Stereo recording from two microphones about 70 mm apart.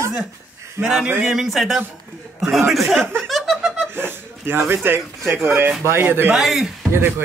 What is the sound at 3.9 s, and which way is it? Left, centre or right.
Speech, right.